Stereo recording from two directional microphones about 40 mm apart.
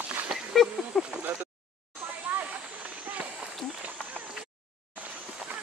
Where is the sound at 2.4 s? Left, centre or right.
Right.